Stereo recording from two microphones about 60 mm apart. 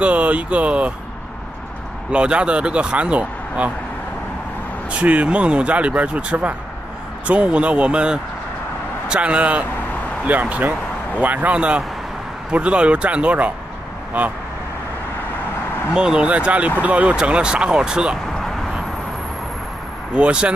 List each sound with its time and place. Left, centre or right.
0.0 s speech: right
2.0 s speech: centre
4.9 s speech: right
15.9 s speech: centre
20.2 s speech: centre